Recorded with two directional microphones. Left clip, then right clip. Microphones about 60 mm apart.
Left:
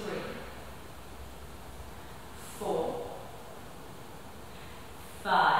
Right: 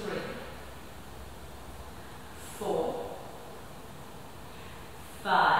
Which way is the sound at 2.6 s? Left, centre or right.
Centre.